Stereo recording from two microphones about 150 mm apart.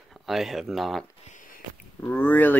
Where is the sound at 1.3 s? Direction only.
60° left (ahead or behind).